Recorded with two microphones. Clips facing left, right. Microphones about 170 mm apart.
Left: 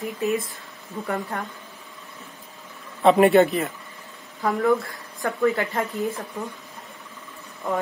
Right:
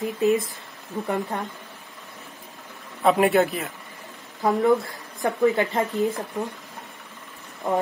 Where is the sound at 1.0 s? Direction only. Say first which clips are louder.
Right 1 dB; 20° right (ahead or behind).